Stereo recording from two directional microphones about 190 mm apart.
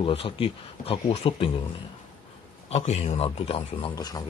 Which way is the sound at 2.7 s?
35° left (ahead or behind).